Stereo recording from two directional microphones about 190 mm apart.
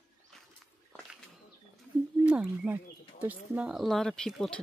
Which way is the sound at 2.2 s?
5° right (ahead or behind).